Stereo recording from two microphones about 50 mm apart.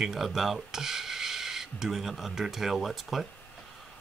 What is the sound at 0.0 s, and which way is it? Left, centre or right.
Speech, centre.